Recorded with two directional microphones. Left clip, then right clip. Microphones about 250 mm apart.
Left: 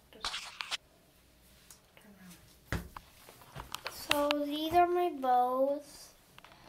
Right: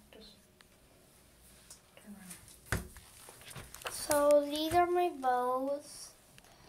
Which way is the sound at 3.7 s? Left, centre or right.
Centre.